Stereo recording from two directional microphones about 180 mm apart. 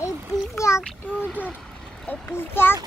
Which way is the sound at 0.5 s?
15° left (ahead or behind).